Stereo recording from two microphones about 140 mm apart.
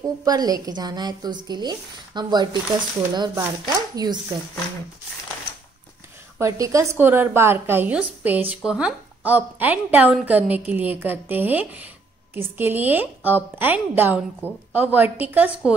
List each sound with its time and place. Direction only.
0.0 s a woman's voice: 25° right (ahead or behind)
6.4 s a woman's voice: 20° right (ahead or behind)